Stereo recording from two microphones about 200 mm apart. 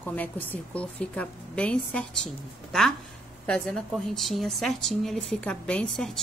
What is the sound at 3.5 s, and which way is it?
A woman's voice, 5° left (ahead or behind).